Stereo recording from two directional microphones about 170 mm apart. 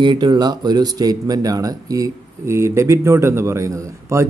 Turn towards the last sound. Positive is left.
turn(degrees=-15)  # may be behind; listen again after turning